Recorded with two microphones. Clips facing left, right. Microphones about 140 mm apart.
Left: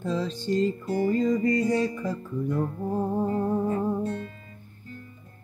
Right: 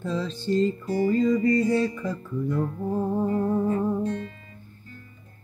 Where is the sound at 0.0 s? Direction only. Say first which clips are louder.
Even; 15° left (ahead or behind).